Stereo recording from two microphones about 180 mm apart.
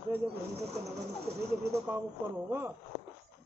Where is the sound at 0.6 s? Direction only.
35° right (ahead or behind).